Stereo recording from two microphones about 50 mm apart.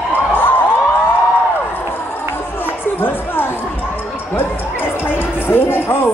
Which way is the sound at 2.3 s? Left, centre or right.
Left.